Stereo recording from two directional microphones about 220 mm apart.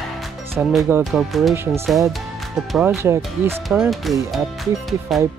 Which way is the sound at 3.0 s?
10° right (ahead or behind).